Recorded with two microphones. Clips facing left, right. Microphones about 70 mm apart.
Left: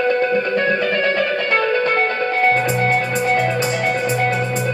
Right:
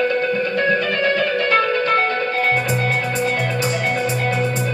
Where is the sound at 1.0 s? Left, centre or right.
Centre.